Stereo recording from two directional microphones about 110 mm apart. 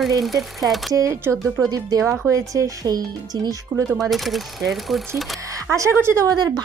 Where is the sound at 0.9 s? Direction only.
30° right (ahead or behind).